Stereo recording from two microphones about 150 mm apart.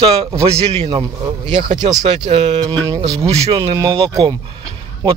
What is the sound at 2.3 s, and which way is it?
Speech, 50° right (ahead or behind).